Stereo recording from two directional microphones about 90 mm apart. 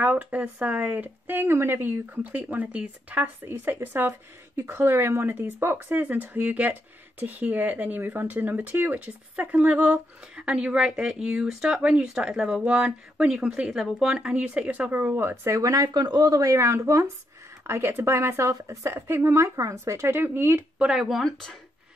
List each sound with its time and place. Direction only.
0.0 s speech: 15° right (ahead or behind)
20.8 s speech: 5° right (ahead or behind)